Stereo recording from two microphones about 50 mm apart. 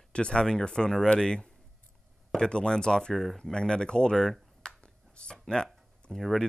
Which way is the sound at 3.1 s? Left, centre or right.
Centre.